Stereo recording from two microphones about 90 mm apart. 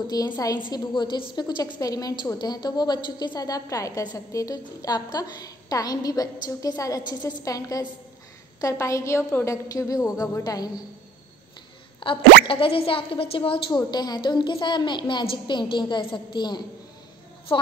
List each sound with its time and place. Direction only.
0.1 s a woman's voice: 45° left (ahead or behind)
12.0 s speech: 75° left (ahead or behind)
13.7 s a woman's voice: 50° left (ahead or behind)